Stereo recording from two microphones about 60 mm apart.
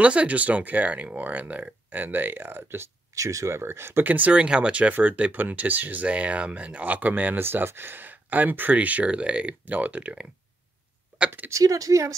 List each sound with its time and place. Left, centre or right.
0.0 s speech: right
3.2 s speech: right
4.0 s speech: right
7.4 s speech: right
11.5 s speech: right